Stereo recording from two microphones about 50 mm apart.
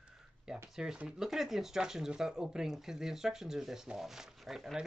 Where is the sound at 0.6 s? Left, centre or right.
Centre.